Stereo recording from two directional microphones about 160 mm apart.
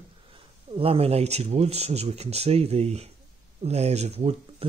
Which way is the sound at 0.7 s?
35° right (ahead or behind).